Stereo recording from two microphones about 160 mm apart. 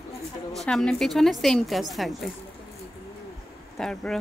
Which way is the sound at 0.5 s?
5° left (ahead or behind).